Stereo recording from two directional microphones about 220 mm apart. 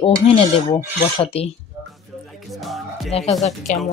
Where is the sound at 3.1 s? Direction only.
25° left (ahead or behind).